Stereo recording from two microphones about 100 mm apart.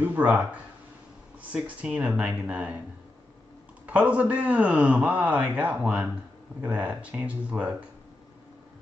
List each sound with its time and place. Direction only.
0.0 s speech: 20° right (ahead or behind)
3.8 s speech: 15° right (ahead or behind)